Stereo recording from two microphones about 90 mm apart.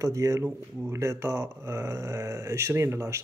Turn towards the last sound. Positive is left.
turn(degrees=-30)  # may be behind; listen again after turning